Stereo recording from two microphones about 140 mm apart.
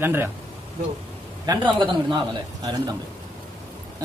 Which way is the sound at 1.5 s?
35° right (ahead or behind).